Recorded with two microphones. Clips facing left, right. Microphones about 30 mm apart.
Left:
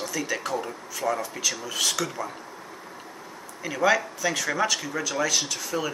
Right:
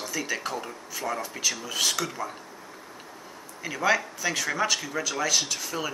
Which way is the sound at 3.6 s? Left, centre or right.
Centre.